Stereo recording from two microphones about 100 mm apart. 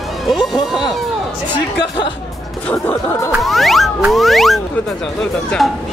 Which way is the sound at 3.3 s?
Centre (ahead or behind).